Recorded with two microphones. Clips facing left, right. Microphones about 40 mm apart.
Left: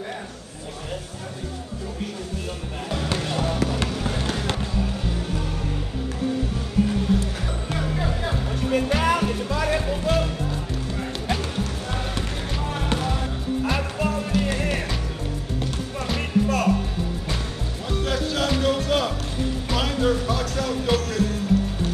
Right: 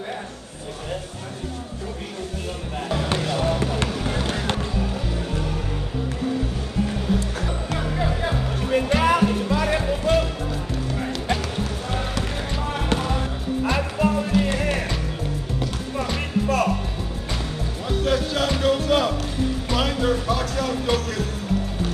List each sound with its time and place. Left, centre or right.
3.2 s basketball bounce: centre
4.3 s music: centre
8.0 s music: centre
12.5 s music: centre
16.0 s music: centre
17.8 s music: centre